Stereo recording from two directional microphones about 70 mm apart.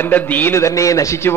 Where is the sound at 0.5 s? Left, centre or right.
Left.